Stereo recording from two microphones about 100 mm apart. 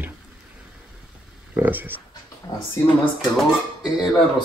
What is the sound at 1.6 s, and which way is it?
Speech, 20° right (ahead or behind).